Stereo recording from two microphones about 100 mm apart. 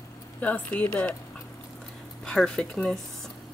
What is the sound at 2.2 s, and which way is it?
Speech, 5° left (ahead or behind).